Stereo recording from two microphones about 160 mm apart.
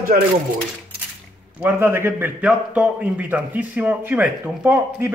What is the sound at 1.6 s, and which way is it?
A man's voice, 15° right (ahead or behind).